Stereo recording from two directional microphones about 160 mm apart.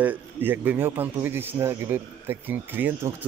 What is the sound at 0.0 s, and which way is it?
Speech, 10° right (ahead or behind).